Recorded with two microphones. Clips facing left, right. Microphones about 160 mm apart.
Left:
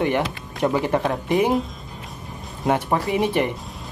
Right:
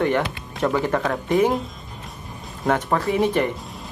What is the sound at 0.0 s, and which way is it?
Speech, 15° left (ahead or behind).